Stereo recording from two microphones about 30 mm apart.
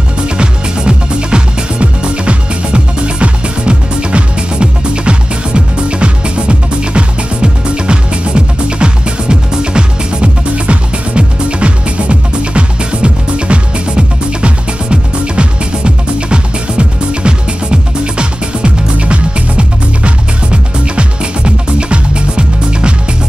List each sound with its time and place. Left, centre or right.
0.4 s music: right
10.5 s music: right